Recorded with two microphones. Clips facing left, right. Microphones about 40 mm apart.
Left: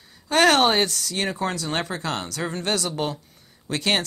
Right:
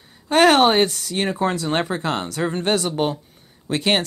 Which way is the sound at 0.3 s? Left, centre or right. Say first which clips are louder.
Right 3 dB; centre.